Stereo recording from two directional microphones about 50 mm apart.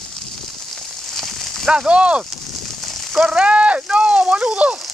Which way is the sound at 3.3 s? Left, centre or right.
Right.